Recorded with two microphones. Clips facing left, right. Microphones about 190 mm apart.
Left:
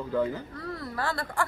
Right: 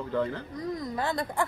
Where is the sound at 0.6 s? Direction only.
15° right (ahead or behind).